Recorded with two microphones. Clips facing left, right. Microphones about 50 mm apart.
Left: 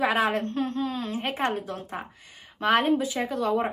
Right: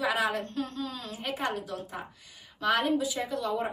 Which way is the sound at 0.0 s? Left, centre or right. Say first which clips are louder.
Left 4 dB; left.